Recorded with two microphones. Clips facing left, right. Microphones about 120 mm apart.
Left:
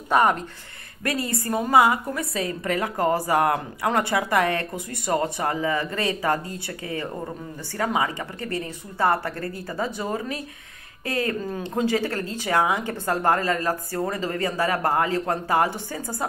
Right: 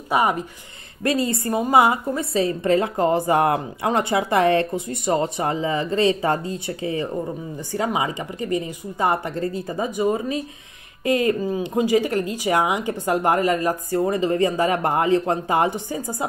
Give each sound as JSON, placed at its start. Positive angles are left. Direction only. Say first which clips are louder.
{"t": 0.1, "sound": "speech", "louder": "even", "side_deg": -10}
{"t": 1.0, "sound": "a woman's voice", "louder": "right 5 dB", "side_deg": -25}